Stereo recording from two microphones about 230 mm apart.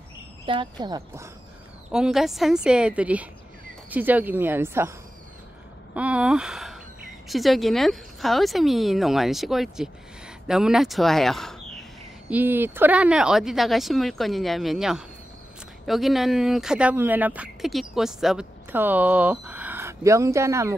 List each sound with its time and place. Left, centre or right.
0.5 s speech: centre
1.9 s a woman's voice: centre
5.9 s a woman's voice: centre